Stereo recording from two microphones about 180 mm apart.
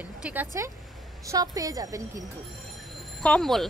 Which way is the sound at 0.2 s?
10° right (ahead or behind).